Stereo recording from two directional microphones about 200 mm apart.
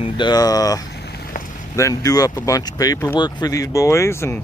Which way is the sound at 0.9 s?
55° left (ahead or behind).